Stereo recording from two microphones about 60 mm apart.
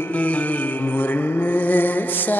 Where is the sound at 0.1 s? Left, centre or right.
Left.